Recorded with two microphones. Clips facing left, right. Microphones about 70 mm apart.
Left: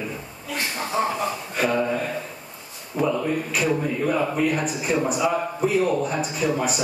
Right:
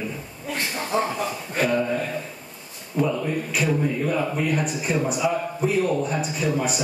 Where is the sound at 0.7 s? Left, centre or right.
Centre.